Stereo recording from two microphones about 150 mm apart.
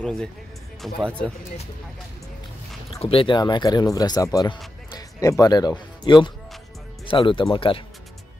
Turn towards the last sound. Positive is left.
turn(degrees=35)  # may be behind; listen again after turning